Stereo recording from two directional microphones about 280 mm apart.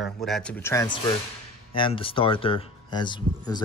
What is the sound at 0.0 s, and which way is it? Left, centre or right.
Speech, centre.